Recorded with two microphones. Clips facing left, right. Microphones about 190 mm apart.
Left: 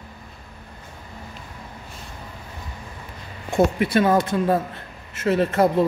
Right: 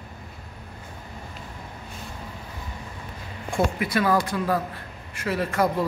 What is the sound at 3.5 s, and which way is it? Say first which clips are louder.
A man's voice: left 5 dB; 25° left (ahead or behind).